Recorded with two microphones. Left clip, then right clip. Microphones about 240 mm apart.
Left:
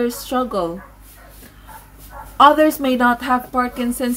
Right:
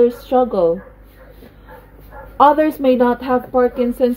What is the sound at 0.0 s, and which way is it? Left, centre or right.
Speech, centre.